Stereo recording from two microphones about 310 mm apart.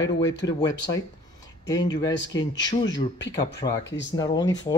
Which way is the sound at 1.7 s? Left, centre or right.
Centre.